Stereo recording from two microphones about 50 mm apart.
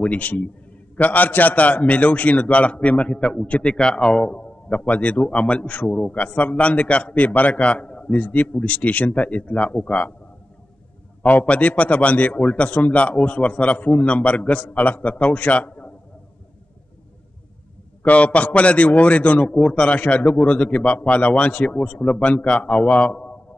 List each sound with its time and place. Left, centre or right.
0.0 s a man's voice: left
11.2 s a man's voice: left
18.0 s a man's voice: left